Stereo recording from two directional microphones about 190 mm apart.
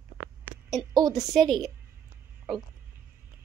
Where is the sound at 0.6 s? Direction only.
20° right (ahead or behind).